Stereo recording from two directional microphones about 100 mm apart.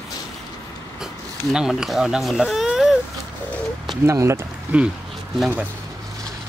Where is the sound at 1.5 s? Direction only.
5° right (ahead or behind).